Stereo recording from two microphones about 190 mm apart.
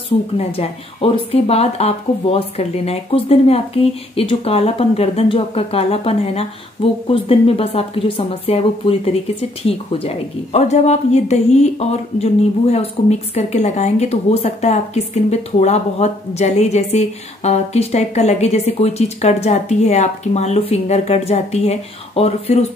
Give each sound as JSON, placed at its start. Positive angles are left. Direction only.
{"t": 0.4, "sound": "speech", "side_deg": 30}